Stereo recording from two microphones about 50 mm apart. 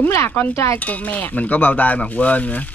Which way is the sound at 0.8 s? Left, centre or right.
Left.